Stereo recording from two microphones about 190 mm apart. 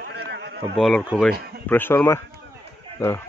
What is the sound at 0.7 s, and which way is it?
Speech, centre (ahead or behind).